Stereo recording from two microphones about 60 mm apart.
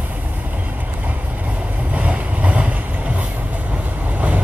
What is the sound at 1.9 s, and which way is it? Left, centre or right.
Vehicle, right.